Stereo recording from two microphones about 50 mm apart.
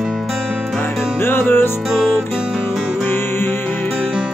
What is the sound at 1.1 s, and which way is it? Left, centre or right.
Music, left.